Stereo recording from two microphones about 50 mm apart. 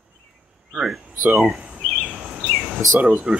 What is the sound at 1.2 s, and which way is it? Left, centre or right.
Speech, right.